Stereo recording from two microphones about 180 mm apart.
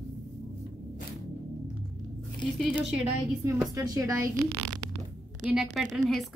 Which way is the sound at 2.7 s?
5° right (ahead or behind).